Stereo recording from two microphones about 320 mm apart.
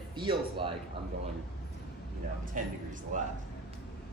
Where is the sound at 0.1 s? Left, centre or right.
Centre.